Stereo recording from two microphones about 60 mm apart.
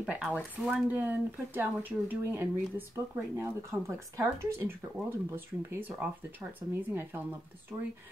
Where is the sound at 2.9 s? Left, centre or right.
Right.